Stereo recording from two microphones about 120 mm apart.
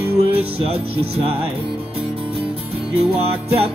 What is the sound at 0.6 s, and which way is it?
Music, 55° right (ahead or behind).